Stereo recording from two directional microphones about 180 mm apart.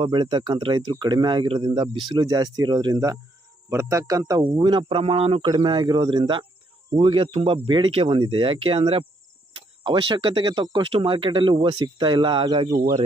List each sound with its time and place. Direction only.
0.0 s speech: 25° right (ahead or behind)